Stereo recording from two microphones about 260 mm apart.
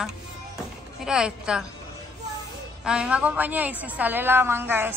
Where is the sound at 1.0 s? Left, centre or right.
Centre.